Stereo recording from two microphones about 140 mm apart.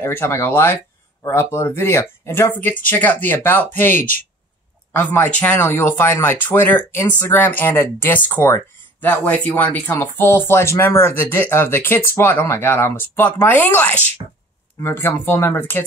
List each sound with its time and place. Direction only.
0.0 s speech: 20° left (ahead or behind)